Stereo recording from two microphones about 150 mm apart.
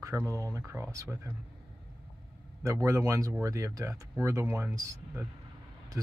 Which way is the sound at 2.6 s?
20° right (ahead or behind).